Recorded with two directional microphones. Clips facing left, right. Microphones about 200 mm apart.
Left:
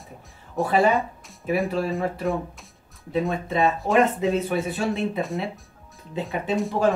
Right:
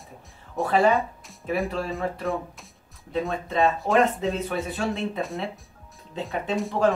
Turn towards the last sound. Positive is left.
turn(degrees=5)  # may be behind; listen again after turning